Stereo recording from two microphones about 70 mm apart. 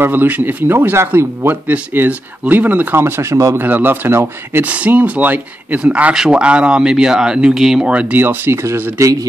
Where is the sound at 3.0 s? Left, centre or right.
Right.